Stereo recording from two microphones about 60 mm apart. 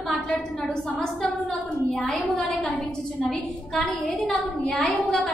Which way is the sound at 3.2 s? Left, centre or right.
Left.